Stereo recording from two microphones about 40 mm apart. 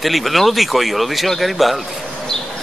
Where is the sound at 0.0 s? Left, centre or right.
Centre.